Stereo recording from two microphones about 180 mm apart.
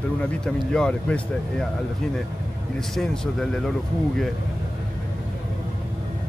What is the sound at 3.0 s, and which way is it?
Speech, centre (ahead or behind).